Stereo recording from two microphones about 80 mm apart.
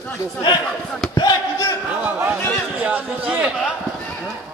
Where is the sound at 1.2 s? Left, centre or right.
Left.